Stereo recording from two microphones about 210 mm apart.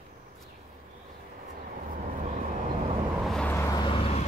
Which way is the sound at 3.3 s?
5° left (ahead or behind).